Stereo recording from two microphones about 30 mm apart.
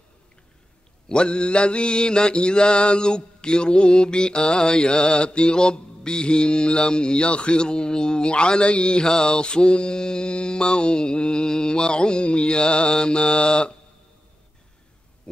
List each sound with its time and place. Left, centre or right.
1.0 s mantra: left